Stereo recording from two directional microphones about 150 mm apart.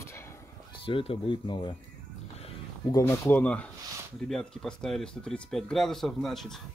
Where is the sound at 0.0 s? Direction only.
15° left (ahead or behind).